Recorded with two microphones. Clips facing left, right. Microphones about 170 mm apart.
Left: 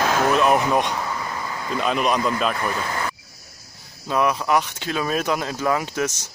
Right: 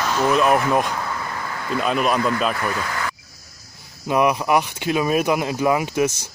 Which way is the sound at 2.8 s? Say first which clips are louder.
Even; 30° left (ahead or behind).